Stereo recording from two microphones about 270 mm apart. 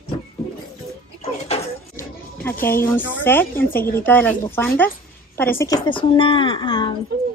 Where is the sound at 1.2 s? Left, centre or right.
Left.